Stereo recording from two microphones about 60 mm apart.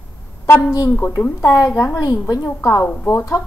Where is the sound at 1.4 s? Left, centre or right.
Left.